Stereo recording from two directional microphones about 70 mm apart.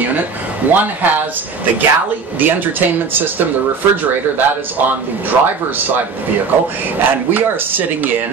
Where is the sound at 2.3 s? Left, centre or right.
Right.